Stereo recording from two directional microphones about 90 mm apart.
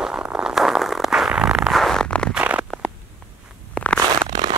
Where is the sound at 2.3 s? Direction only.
15° right (ahead or behind).